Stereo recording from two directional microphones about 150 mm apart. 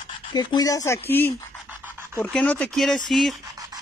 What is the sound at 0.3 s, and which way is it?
Speech, 30° left (ahead or behind).